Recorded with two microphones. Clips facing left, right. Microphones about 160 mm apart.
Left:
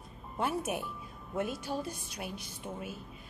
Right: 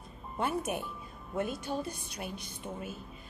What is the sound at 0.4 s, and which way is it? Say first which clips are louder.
A woman's voice: even; 5° left (ahead or behind).